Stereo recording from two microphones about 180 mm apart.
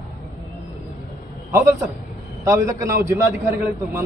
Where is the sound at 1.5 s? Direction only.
15° right (ahead or behind).